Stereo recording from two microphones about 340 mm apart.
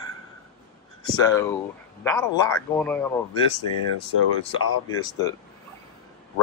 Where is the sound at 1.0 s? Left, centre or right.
Centre.